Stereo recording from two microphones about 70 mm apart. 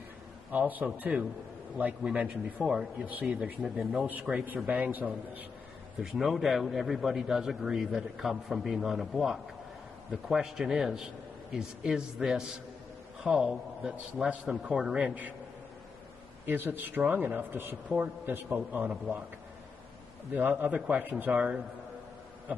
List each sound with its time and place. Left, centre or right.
0.5 s speech: right
2.6 s a man's voice: centre
3.1 s a man's voice: right
6.1 s a man's voice: centre
14.3 s a man's voice: centre
16.4 s speech: right
18.7 s a man's voice: centre
20.3 s speech: right
20.8 s a man's voice: centre